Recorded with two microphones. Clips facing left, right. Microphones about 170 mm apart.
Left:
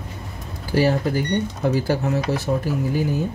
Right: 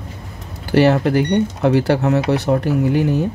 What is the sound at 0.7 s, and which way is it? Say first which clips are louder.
Speech: right 6 dB; 70° right (ahead or behind).